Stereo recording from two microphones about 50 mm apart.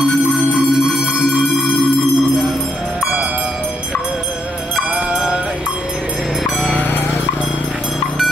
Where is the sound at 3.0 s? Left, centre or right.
Right.